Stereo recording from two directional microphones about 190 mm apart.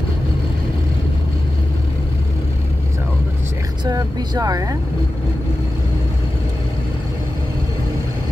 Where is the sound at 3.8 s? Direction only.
20° right (ahead or behind).